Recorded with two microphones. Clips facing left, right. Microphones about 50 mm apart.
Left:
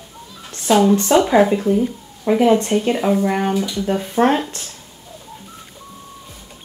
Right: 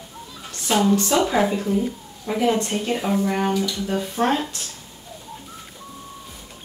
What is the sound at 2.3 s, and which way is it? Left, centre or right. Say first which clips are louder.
A woman's voice: left 7 dB; left.